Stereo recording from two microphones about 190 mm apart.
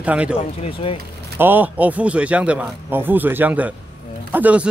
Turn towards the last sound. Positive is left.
turn(degrees=-5)  # may be behind; listen again after turning